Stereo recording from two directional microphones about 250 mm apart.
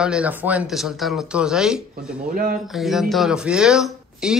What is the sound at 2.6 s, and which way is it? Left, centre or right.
Speech, centre.